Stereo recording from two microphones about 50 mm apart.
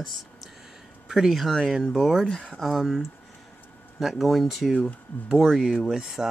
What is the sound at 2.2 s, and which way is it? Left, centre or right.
Speech, left.